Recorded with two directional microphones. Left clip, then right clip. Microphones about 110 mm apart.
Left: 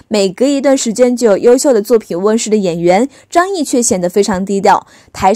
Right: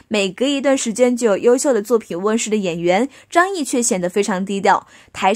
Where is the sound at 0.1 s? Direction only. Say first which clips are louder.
Left 6 dB; 45° left (ahead or behind).